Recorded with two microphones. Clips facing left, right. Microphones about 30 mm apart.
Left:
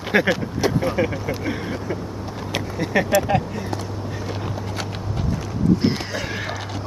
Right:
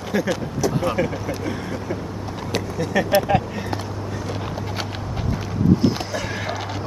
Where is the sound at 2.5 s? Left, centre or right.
Left.